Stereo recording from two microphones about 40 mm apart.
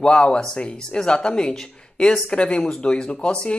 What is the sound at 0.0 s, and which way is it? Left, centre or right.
Speech, left.